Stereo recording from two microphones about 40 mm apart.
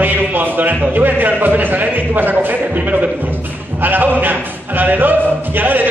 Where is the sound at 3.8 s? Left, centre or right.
Right.